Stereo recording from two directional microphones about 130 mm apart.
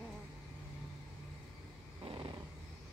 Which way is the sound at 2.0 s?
40° right (ahead or behind).